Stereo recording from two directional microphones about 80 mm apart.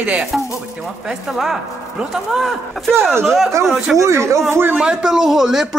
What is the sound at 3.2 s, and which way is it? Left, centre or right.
Speech, centre.